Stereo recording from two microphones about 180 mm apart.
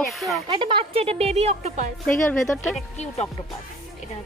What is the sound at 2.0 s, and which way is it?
Speech, 5° left (ahead or behind).